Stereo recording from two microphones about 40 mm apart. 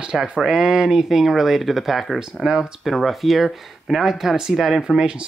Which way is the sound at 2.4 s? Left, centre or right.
Centre.